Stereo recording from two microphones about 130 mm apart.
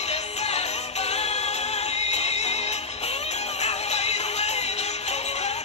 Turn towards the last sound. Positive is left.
turn(degrees=55)  # may be behind; listen again after turning